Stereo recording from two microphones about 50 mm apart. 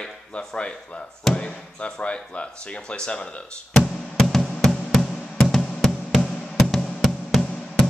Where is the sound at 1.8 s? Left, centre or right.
Left.